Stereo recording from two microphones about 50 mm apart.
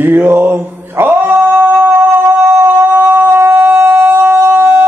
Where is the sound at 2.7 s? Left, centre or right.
Right.